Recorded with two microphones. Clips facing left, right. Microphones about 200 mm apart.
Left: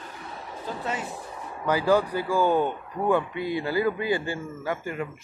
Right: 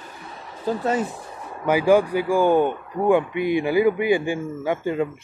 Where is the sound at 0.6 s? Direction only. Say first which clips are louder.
Right 10 dB; 40° right (ahead or behind).